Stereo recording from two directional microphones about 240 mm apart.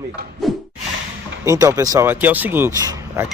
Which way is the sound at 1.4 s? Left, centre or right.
Centre.